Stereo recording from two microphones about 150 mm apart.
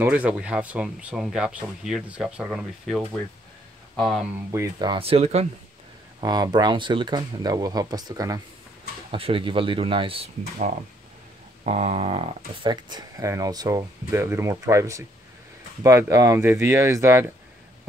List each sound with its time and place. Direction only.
0.0 s speech: 10° right (ahead or behind)
4.5 s speech: 25° right (ahead or behind); by 5.5 s 45° right (ahead or behind)
6.2 s speech: 25° right (ahead or behind)
9.1 s speech: 35° right (ahead or behind)
11.6 s speech: 45° right (ahead or behind)
12.9 s speech: 20° right (ahead or behind)